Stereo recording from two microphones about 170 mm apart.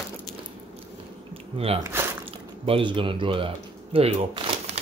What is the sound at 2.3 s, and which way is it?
Speech, 35° right (ahead or behind).